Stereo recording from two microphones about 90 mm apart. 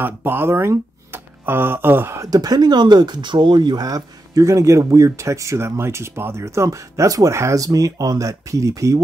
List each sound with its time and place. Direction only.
0.0 s speech: 25° right (ahead or behind)
2.2 s speech: 45° right (ahead or behind)